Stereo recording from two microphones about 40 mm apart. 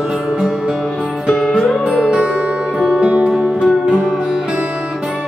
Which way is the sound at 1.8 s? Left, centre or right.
Right.